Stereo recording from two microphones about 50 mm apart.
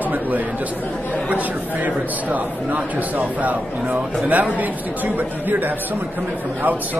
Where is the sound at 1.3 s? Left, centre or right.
Right.